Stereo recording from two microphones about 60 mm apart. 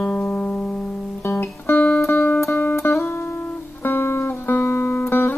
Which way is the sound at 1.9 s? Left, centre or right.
Left.